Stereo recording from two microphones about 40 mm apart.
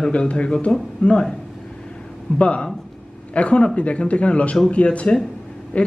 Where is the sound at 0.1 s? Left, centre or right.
Left.